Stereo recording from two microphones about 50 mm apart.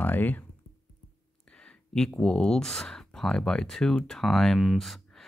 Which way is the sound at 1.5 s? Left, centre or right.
Centre.